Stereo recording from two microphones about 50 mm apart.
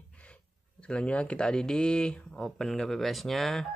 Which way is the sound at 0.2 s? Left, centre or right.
Left.